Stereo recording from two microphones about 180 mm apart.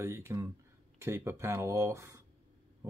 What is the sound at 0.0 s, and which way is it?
Speech, 15° right (ahead or behind).